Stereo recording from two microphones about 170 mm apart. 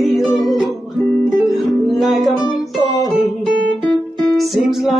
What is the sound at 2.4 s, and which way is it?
Music, 20° left (ahead or behind).